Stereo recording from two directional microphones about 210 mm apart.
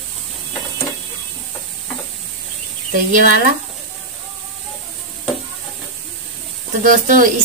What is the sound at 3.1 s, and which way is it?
Speech, 40° right (ahead or behind).